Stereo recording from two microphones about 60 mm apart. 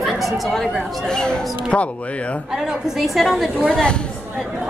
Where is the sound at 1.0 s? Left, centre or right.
Centre.